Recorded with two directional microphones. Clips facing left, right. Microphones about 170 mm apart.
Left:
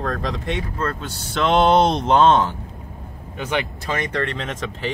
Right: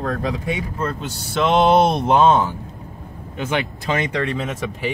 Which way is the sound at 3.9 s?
20° right (ahead or behind).